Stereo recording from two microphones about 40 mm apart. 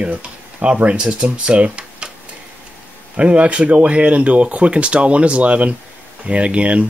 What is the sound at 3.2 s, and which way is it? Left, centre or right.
Speech, right.